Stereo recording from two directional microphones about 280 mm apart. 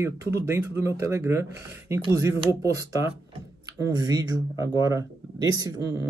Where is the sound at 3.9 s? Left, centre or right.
Centre.